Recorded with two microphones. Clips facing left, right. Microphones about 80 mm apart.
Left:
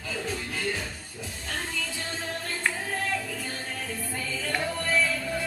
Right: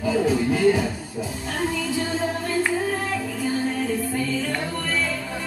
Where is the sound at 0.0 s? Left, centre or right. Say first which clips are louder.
Right 13 dB; centre.